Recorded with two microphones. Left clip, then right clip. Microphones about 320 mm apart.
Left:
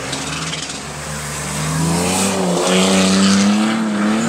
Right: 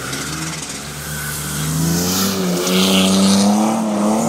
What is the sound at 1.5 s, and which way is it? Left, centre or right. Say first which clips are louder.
Vehicle: left 2 dB; left.